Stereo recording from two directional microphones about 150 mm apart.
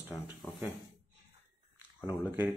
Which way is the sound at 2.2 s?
15° right (ahead or behind).